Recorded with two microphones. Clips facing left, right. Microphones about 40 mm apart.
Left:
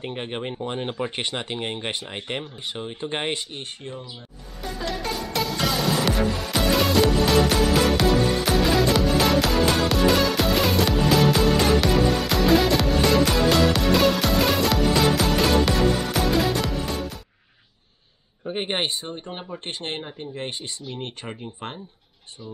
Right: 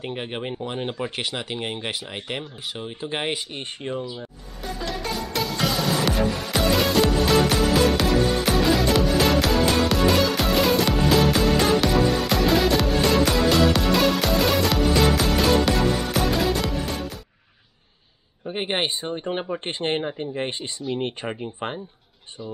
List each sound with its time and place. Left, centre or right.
0.0 s speech: centre
3.5 s speech: right
4.6 s music: centre
18.4 s a sound: centre
18.9 s speech: centre